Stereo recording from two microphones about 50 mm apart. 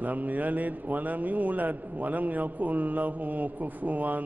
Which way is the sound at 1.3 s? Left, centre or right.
Right.